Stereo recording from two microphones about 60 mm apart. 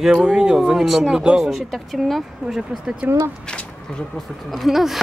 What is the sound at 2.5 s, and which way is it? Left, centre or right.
Speech, centre.